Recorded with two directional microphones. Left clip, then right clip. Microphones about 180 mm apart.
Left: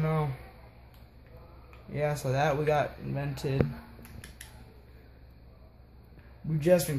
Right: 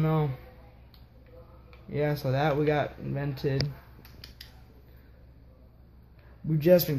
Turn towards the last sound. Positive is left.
turn(degrees=-60)  # may be behind; listen again after turning